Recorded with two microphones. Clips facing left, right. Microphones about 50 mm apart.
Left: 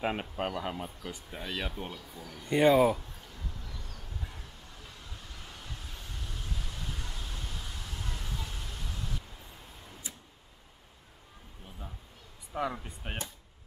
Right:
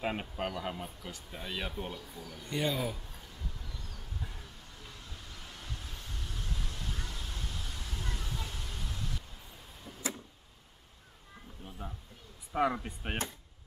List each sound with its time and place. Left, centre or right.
0.0 s speech: centre
1.4 s speech: centre
2.4 s speech: left
3.6 s vehicle: centre
10.0 s a sound: right
12.7 s speech: centre